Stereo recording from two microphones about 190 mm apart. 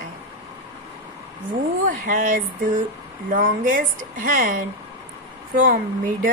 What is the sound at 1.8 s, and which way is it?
Speech, 45° right (ahead or behind).